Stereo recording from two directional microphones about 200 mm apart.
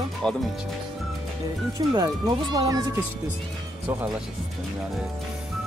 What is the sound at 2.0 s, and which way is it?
Speech, 20° right (ahead or behind).